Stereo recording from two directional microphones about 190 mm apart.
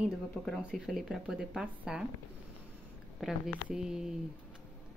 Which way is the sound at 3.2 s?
Centre (ahead or behind).